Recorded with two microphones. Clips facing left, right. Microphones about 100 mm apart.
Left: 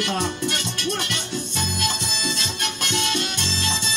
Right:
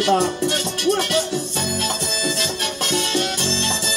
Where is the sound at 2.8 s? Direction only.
35° right (ahead or behind).